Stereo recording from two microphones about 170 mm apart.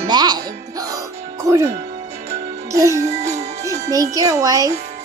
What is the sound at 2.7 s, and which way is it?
Music, 20° right (ahead or behind).